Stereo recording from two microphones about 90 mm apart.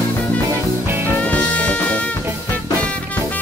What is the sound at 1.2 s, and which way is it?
Music, 15° left (ahead or behind).